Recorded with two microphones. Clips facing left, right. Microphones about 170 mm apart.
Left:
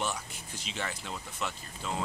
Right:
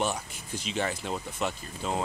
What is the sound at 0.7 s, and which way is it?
Speech, 40° right (ahead or behind).